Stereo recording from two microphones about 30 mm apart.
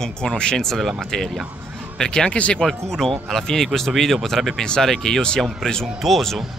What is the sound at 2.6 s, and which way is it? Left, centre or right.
Speech, centre.